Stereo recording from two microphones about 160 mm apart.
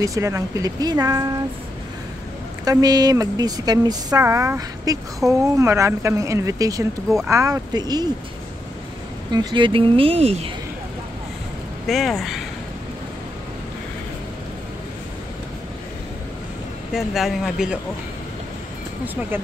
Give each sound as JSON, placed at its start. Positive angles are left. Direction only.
{"t": 0.0, "sound": "a woman's voice", "side_deg": -20}
{"t": 2.6, "sound": "a woman's voice", "side_deg": -25}
{"t": 9.3, "sound": "speech", "side_deg": -25}
{"t": 11.9, "sound": "speech", "side_deg": 0}
{"t": 16.9, "sound": "speech", "side_deg": 0}